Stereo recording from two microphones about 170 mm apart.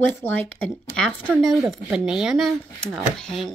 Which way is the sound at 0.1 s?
10° left (ahead or behind).